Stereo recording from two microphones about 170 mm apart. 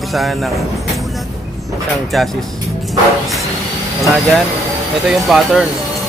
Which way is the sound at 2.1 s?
Centre (ahead or behind).